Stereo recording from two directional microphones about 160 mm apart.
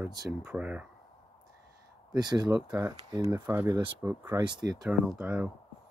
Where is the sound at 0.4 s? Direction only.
10° right (ahead or behind).